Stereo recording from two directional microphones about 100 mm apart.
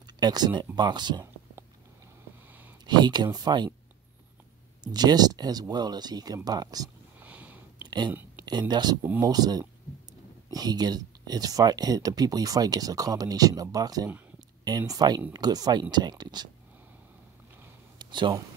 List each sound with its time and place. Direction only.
0.0 s speech: 45° right (ahead or behind)
2.4 s a sound: 15° right (ahead or behind)
2.8 s speech: 45° right (ahead or behind)
4.8 s speech: 45° right (ahead or behind)
7.2 s sniff: 15° right (ahead or behind)
8.5 s speech: 45° right (ahead or behind)
17.9 s a sound: 55° right (ahead or behind)